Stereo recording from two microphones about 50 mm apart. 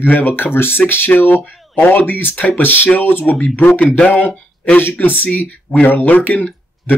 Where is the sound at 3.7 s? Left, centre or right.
Left.